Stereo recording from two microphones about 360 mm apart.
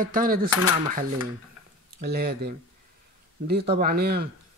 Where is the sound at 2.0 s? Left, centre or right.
Right.